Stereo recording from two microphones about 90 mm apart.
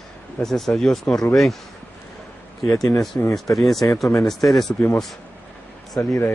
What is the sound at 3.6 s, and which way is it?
Speech, centre (ahead or behind).